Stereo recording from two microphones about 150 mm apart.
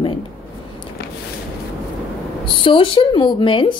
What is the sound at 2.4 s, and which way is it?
Speech, 35° left (ahead or behind).